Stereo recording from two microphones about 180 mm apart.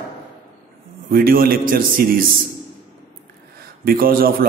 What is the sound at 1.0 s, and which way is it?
A man's voice, 55° right (ahead or behind).